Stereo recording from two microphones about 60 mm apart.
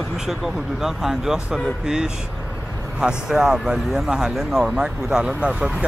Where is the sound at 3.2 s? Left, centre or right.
Centre.